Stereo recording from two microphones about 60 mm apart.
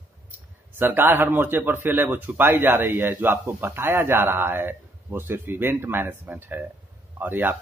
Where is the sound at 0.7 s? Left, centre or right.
Right.